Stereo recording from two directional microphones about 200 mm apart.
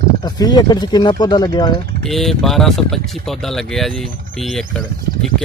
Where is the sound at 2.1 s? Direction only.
Centre (ahead or behind).